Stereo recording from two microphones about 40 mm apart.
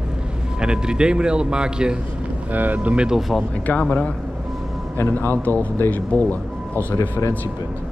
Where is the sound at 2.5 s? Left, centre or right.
Right.